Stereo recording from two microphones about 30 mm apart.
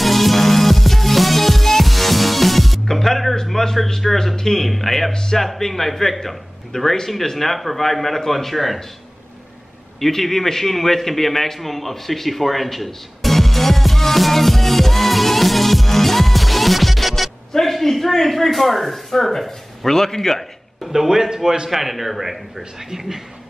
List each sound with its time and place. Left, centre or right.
0.0 s music: centre
3.4 s a sound: centre
4.4 s a man's voice: centre
5.1 s speech: left
5.4 s a man's voice: centre
9.9 s a sound: centre
17.5 s a man's voice: centre
20.9 s speech: centre
21.6 s a man's voice: centre
22.8 s speech: centre